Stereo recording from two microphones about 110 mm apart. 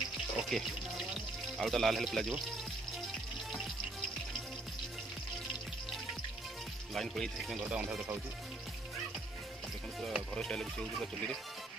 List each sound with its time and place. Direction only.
0.4 s music: centre (ahead or behind)
1.6 s speech: centre (ahead or behind)
6.9 s speech: centre (ahead or behind)
10.0 s speech: centre (ahead or behind)